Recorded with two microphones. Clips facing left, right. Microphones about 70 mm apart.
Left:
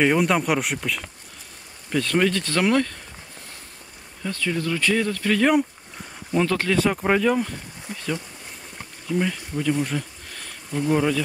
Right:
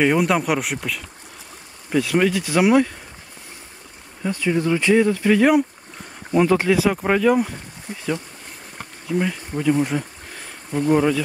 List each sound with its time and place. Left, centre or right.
0.0 s speech: centre
4.2 s speech: centre
6.9 s speech: centre
9.0 s bee: centre
10.9 s speech: centre